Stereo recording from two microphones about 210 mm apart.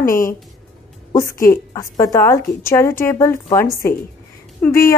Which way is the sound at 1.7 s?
15° left (ahead or behind).